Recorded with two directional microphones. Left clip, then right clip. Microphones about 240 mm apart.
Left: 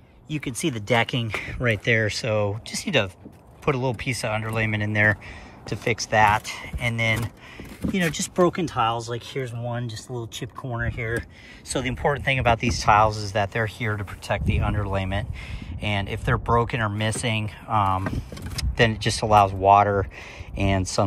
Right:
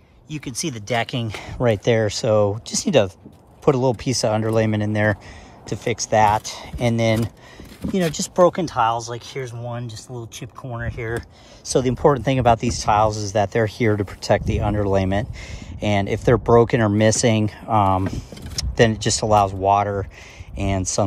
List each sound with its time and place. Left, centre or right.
0.3 s speech: centre
11.6 s speech: centre